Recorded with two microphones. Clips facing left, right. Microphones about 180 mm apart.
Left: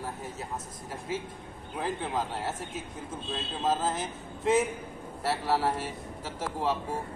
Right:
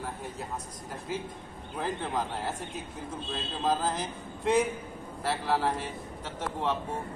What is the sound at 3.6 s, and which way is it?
A man's voice, centre (ahead or behind).